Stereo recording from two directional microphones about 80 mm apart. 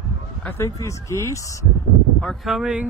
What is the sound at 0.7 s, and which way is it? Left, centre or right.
Speech, left.